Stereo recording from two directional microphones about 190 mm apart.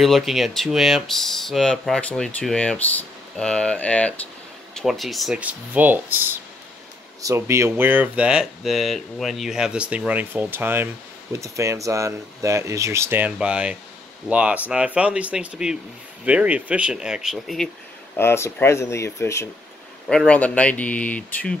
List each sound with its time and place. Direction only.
0.0 s speech: centre (ahead or behind)
18.1 s speech: 15° left (ahead or behind)
20.1 s speech: 5° left (ahead or behind)